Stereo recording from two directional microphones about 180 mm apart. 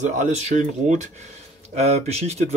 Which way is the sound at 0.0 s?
45° right (ahead or behind).